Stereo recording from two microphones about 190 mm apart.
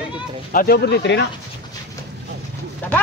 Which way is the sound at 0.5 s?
55° left (ahead or behind).